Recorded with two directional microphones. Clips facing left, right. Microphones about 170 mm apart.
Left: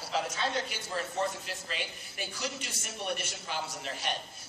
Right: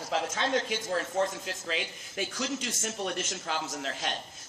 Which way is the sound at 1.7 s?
90° right.